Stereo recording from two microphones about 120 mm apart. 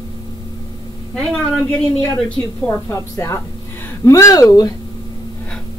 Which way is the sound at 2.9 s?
25° left (ahead or behind).